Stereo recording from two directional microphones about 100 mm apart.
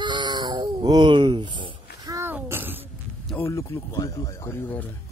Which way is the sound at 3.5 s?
30° left (ahead or behind).